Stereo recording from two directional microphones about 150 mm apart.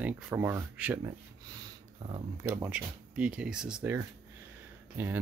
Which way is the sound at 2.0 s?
45° right (ahead or behind).